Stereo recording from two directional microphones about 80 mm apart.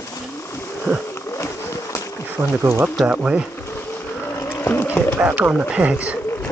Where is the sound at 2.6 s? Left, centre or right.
Right.